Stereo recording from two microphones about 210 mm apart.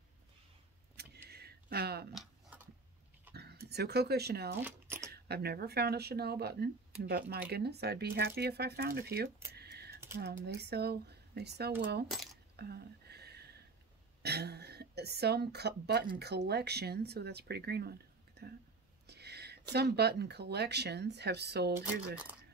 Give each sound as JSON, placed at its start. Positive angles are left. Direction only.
{"t": 0.9, "sound": "vehicle", "side_deg": -50}
{"t": 2.1, "sound": "a sound", "side_deg": -5}
{"t": 3.3, "sound": "speech", "side_deg": -50}
{"t": 4.6, "sound": "a sound", "side_deg": -10}
{"t": 5.1, "sound": "speech", "side_deg": -50}
{"t": 9.5, "sound": "computer keyboard", "side_deg": -50}
{"t": 10.1, "sound": "speech", "side_deg": -50}
{"t": 12.5, "sound": "a sound", "side_deg": -50}
{"t": 16.2, "sound": "speech", "side_deg": -50}